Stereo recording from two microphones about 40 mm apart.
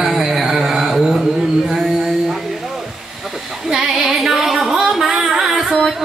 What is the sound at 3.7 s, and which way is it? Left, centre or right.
Music, centre.